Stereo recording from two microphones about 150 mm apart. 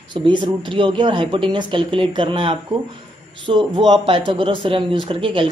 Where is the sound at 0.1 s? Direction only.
30° right (ahead or behind).